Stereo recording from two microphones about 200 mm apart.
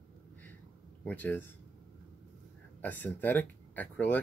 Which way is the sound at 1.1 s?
10° left (ahead or behind).